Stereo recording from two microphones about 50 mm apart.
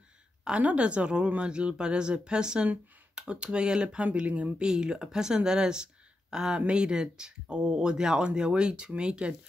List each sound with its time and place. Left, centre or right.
0.5 s speech: right
4.6 s speech: centre